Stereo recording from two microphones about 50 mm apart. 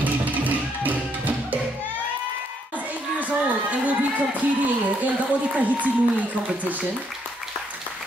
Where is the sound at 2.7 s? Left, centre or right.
Right.